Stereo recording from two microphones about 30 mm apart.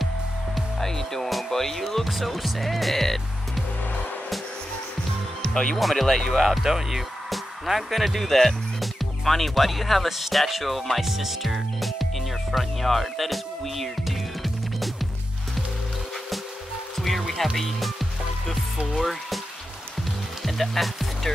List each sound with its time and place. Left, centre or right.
0.7 s music: centre
1.5 s speech: centre
2.0 s speech: centre
5.5 s speech: left
5.8 s speech: centre
6.0 s speech: centre
6.3 s speech: centre
8.3 s speech: centre
10.4 s speech: centre
11.0 s speech: centre
11.8 s music: centre
17.6 s speech: centre
20.4 s music: centre